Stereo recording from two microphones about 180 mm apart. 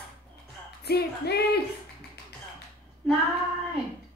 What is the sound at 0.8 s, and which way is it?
Speech, 60° left (ahead or behind).